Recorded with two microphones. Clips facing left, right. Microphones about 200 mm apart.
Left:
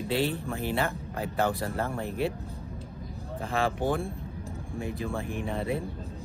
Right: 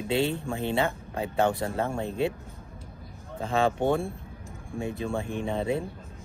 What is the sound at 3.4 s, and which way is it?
Speech, 30° right (ahead or behind).